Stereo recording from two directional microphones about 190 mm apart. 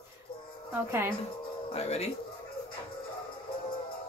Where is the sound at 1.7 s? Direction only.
35° left (ahead or behind).